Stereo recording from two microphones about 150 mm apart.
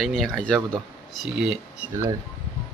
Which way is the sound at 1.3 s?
5° right (ahead or behind).